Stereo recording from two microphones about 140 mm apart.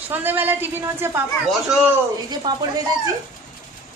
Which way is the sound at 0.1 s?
15° right (ahead or behind).